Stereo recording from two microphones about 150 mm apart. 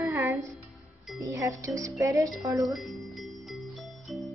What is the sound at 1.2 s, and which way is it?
Speech, 20° right (ahead or behind).